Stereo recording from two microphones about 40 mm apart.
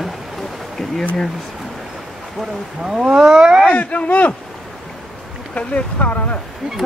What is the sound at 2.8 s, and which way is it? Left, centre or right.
Speech, centre.